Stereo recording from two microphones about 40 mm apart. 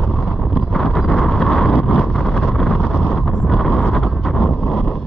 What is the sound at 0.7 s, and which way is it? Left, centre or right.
Vehicle, centre.